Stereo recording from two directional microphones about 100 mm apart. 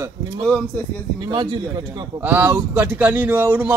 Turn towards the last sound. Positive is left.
turn(degrees=-20)  # may be behind; listen again after turning